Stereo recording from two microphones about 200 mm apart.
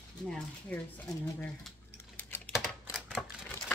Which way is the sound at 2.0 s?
10° left (ahead or behind).